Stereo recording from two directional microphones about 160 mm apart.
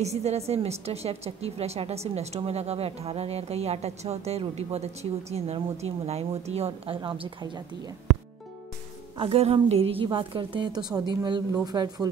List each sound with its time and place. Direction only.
0.0 s a woman's voice: 40° right (ahead or behind); by 7.9 s 25° right (ahead or behind)
9.1 s a woman's voice: 35° right (ahead or behind)